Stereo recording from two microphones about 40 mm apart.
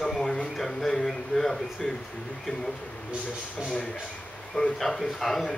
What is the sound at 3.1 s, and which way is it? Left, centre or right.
Speech, right.